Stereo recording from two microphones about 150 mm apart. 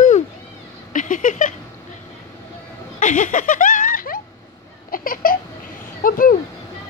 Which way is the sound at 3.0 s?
55° left (ahead or behind).